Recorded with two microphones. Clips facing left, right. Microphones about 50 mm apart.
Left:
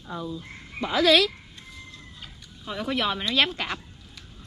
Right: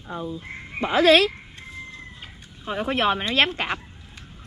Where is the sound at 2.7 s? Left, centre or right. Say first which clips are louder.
Right 5 dB; right.